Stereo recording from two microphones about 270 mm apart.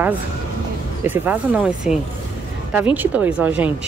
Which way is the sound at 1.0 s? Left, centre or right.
Centre.